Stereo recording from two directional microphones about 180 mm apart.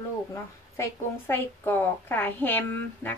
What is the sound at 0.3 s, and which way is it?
A woman's voice, 15° left (ahead or behind).